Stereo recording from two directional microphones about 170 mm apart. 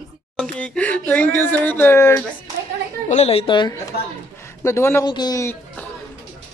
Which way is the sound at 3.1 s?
40° left (ahead or behind).